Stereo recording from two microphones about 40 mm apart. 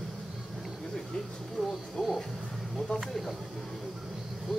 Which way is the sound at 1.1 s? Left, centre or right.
Centre.